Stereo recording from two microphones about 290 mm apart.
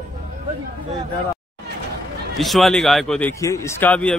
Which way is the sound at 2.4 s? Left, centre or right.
Centre.